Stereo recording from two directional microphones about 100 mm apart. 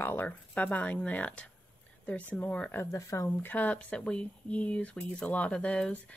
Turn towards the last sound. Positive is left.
turn(degrees=10)  # may be behind; listen again after turning